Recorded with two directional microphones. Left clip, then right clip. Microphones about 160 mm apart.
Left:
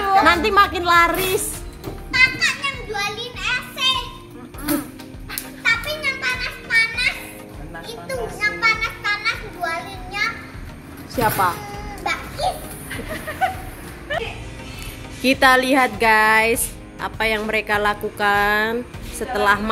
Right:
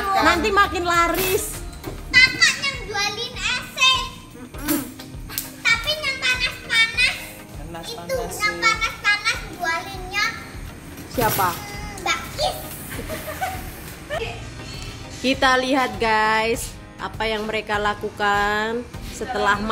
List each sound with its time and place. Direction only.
0.2 s speech: centre (ahead or behind)
2.0 s children playing: 25° left (ahead or behind)
5.6 s music: 15° left (ahead or behind)
8.1 s children playing: 20° left (ahead or behind)
11.1 s speech: 5° left (ahead or behind)
12.0 s music: 15° left (ahead or behind)
15.2 s speech: 5° left (ahead or behind)